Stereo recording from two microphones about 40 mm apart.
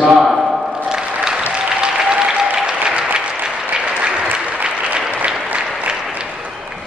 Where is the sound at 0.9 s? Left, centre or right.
Centre.